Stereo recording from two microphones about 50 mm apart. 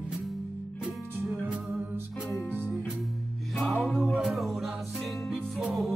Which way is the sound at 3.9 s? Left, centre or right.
Centre.